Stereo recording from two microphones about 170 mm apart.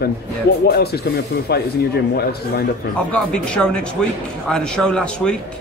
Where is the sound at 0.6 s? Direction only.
70° left (ahead or behind).